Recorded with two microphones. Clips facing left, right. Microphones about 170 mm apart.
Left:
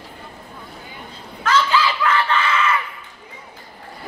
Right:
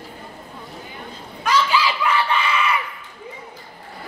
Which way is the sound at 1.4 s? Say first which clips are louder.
Left 1 dB; 10° right (ahead or behind).